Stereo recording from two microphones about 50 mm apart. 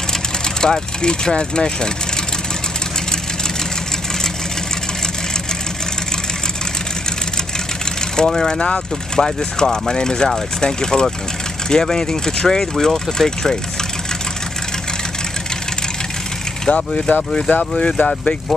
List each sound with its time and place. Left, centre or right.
0.6 s speech: centre
8.3 s speech: centre
16.6 s speech: left
17.5 s speech: left
17.8 s speech: centre